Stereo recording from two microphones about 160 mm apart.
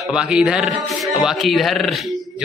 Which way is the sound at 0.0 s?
5° right (ahead or behind).